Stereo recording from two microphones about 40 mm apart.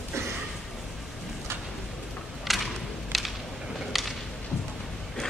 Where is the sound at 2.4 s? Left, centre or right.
Centre.